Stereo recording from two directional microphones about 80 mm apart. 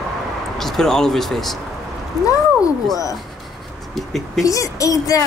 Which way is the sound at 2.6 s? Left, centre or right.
Left.